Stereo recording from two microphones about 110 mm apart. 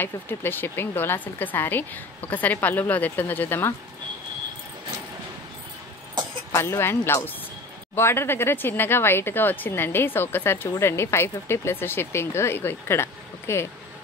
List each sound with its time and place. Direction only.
0.0 s a woman's voice: 20° left (ahead or behind)
6.5 s speech: 25° left (ahead or behind)